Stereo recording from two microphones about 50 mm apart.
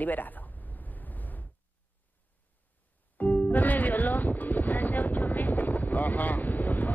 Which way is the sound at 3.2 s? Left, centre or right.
Left.